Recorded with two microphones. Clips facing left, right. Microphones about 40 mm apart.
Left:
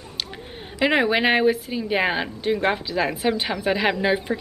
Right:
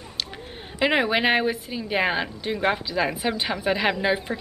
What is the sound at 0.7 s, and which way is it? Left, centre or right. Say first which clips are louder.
A woman's voice: left 2 dB; centre.